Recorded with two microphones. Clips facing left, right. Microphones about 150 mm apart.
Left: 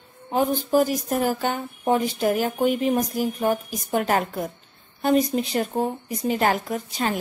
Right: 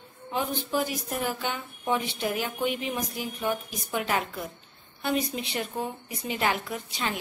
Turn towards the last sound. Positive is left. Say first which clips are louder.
# left 7 dB
turn(degrees=40)  # may be behind; listen again after turning